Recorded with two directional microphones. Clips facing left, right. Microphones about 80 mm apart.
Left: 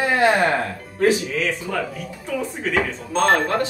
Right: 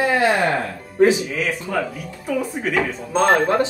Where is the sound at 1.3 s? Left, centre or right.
Centre.